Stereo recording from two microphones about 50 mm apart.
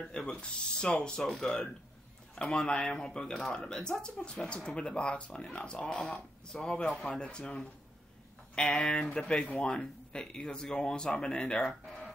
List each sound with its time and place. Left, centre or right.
0.1 s speech: centre
2.5 s speech: centre
9.5 s speech: left
11.8 s a sound: centre